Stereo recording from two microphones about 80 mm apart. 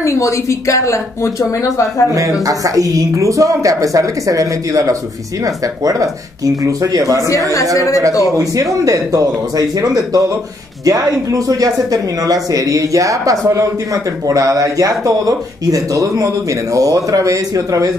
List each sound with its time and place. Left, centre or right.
0.0 s speech: left
2.4 s speech: right
7.7 s speech: left
8.8 s speech: right